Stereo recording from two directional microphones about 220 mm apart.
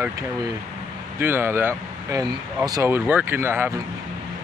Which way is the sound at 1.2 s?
10° right (ahead or behind).